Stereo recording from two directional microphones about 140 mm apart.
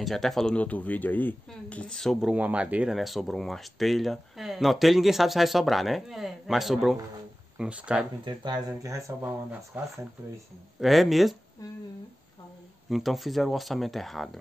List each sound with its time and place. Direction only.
0.0 s speech: centre (ahead or behind)
8.5 s speech: 20° right (ahead or behind)
10.8 s speech: centre (ahead or behind)
12.9 s speech: centre (ahead or behind)